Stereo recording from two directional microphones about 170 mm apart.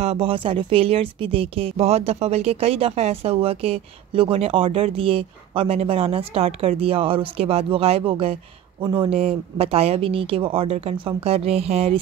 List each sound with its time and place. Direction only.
0.0 s speech: 35° right (ahead or behind)